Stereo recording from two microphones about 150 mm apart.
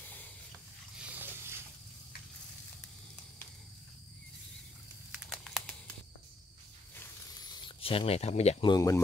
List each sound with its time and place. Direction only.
0.9 s dog: 10° right (ahead or behind)
5.2 s crumpling: centre (ahead or behind)
7.0 s zipper: 25° left (ahead or behind); by 8.6 s 45° left (ahead or behind)
8.6 s speech: 25° left (ahead or behind)